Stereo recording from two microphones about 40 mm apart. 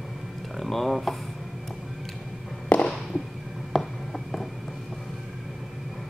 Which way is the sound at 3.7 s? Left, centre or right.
Centre.